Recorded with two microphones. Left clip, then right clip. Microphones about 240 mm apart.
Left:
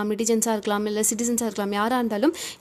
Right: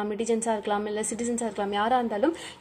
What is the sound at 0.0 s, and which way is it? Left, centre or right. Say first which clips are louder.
A woman's voice: left 3 dB; left.